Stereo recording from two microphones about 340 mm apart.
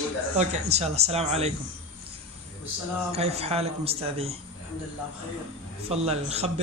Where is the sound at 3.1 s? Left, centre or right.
Centre.